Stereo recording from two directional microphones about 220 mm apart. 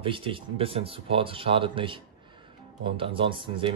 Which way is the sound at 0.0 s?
25° right (ahead or behind).